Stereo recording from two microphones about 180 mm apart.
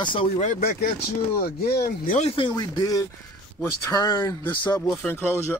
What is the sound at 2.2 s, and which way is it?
Speech, 30° left (ahead or behind).